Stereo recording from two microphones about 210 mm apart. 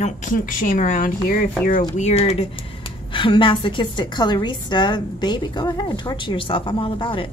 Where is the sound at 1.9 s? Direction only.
30° left (ahead or behind).